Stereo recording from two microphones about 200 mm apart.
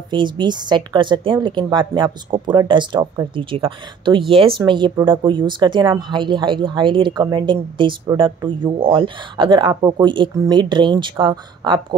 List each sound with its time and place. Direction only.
0.1 s speech: 20° right (ahead or behind)